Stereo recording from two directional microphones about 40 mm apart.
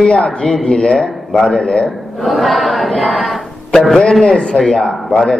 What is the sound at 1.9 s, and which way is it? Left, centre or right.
A man's voice, centre.